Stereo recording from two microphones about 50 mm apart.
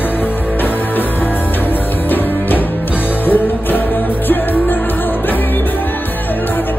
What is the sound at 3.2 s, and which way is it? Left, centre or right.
Music, left.